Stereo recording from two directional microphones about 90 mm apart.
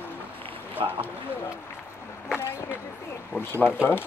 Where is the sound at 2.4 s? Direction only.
30° left (ahead or behind).